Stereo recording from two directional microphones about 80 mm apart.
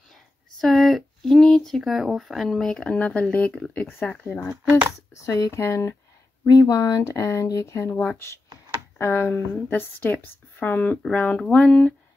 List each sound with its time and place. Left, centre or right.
0.6 s a sound: centre
1.8 s speech: centre
5.1 s speech: left
6.4 s speech: left
8.9 s a woman's voice: left